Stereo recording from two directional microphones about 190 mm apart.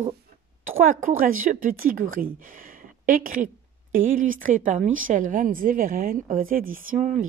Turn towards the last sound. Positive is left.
turn(degrees=-40)  # may be behind; listen again after turning